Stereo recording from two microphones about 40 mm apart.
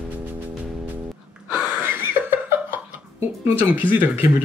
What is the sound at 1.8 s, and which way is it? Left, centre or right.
Laughter, right.